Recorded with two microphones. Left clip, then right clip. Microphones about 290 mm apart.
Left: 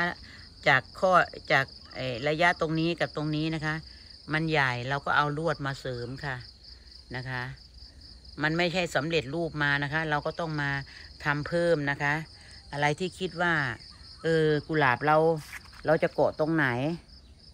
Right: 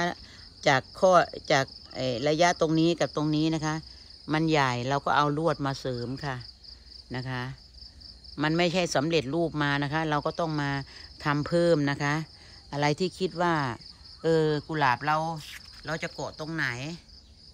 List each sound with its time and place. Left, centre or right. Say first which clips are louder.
0.0 s speech: even; centre
7.1 s speech: even; right; by 16.1 s centre
16.2 s speech: left 11 dB; left
16.4 s speech: left 4 dB; centre